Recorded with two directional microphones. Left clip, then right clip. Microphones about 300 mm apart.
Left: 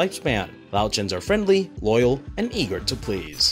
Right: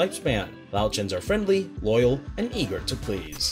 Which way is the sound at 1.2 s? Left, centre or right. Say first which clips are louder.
Left 4 dB; left.